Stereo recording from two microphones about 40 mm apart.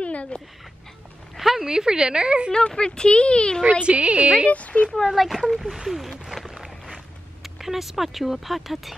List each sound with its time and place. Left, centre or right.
0.0 s a sound: left
1.3 s speech: centre; by 2.5 s right
2.5 s speech: left
3.8 s a woman's voice: right
4.5 s speech: left
5.1 s speech: centre
5.9 s a sound: centre
7.4 s speech: centre